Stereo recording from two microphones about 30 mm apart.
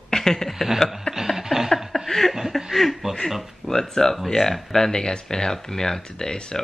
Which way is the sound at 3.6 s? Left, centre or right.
Centre.